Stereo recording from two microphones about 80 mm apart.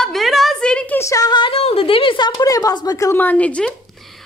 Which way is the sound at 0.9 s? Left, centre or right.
Left.